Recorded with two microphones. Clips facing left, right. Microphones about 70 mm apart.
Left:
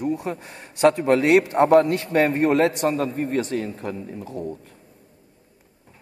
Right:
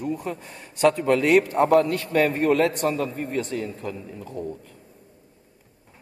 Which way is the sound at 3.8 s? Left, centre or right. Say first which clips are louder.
Left 2 dB; left.